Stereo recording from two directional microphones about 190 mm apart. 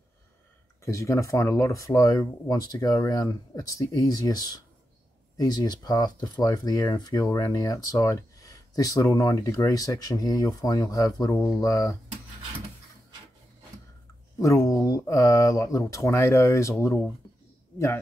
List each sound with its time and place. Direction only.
0.8 s speech: 15° left (ahead or behind)
14.4 s speech: 15° left (ahead or behind)